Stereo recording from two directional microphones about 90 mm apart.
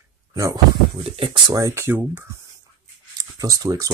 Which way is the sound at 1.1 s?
90° right.